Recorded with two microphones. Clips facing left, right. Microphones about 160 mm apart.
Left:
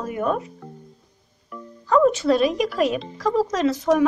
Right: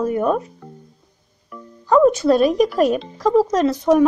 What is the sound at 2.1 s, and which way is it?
Speech, 40° right (ahead or behind).